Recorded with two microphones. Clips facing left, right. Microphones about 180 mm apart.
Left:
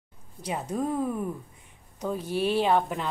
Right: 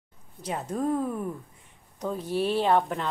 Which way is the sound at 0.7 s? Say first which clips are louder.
Right 1 dB; centre (ahead or behind).